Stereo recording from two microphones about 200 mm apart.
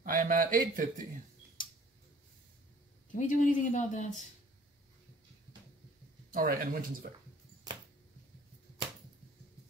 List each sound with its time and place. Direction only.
0.0 s speech: 45° right (ahead or behind)
1.6 s tick-tock: 45° left (ahead or behind)
3.2 s speech: 40° left (ahead or behind)
6.3 s speech: 45° right (ahead or behind)